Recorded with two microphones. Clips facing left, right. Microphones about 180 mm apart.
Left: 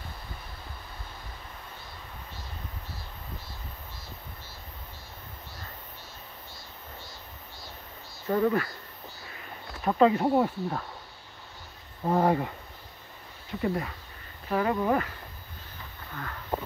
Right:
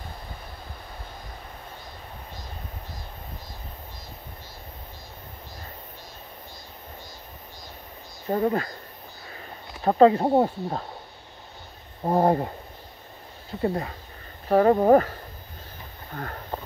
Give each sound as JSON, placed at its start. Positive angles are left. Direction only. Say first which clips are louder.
{"t": 8.3, "sound": "speech", "louder": "right 1 dB", "side_deg": -30}
{"t": 12.0, "sound": "speech", "louder": "right 3 dB", "side_deg": -35}
{"t": 13.6, "sound": "speech", "louder": "right 3 dB", "side_deg": -30}
{"t": 14.5, "sound": "speech", "louder": "right 9 dB", "side_deg": -45}
{"t": 16.1, "sound": "a sound", "louder": "right 5 dB", "side_deg": -40}